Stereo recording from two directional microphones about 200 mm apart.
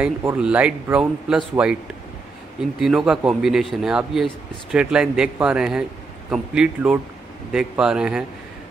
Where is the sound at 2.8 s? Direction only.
Centre (ahead or behind).